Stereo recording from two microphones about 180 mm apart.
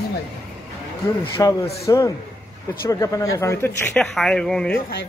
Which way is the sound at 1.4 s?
20° left (ahead or behind).